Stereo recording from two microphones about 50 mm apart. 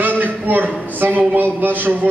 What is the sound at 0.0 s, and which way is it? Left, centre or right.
A man's voice, right.